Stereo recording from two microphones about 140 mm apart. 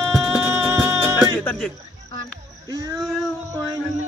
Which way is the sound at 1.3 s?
10° left (ahead or behind).